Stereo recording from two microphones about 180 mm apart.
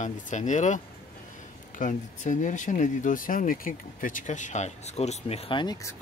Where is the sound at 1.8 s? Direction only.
45° left (ahead or behind); by 6.0 s 20° left (ahead or behind).